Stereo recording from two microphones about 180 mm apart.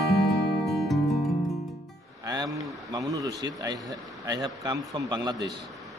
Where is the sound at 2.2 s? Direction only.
20° right (ahead or behind).